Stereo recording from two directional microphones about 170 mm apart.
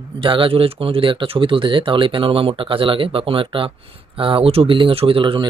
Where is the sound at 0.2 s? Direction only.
30° right (ahead or behind).